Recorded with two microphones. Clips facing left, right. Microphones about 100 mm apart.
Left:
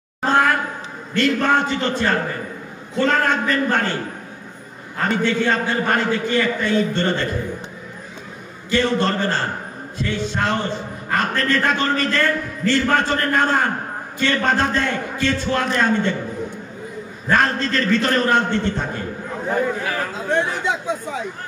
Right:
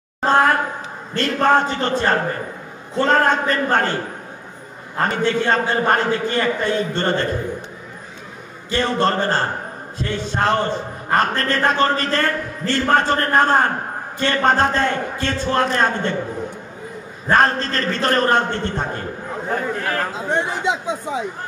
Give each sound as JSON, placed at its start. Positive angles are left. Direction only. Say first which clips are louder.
{"t": 0.2, "sound": "a sound", "louder": "right 2 dB", "side_deg": -35}
{"t": 1.1, "sound": "a man's voice", "louder": "right 1 dB", "side_deg": -35}
{"t": 4.9, "sound": "a man's voice", "louder": "right 1 dB", "side_deg": -35}
{"t": 8.6, "sound": "a man's voice", "louder": "even", "side_deg": -35}
{"t": 17.3, "sound": "a man's voice", "louder": "right 2 dB", "side_deg": -35}
{"t": 19.5, "sound": "speech", "louder": "left 1 dB", "side_deg": 10}
{"t": 20.1, "sound": "speech", "louder": "left 1 dB", "side_deg": -20}